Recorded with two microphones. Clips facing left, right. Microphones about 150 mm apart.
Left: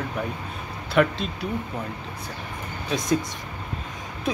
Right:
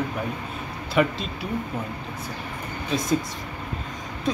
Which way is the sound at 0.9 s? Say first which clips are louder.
Left 1 dB; centre (ahead or behind).